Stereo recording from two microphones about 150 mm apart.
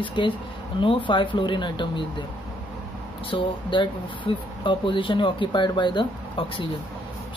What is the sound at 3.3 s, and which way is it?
Speech, 35° left (ahead or behind).